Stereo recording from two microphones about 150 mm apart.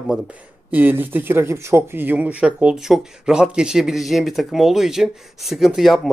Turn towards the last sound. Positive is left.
turn(degrees=0)  # may be behind; listen again after turning